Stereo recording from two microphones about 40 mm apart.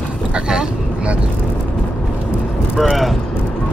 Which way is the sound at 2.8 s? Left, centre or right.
Centre.